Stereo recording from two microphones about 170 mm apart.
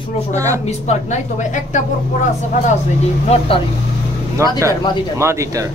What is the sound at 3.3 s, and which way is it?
Speech, 35° left (ahead or behind).